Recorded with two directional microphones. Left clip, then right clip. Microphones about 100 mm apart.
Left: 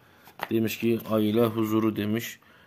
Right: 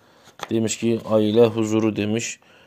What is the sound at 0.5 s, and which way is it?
Speech, 40° right (ahead or behind).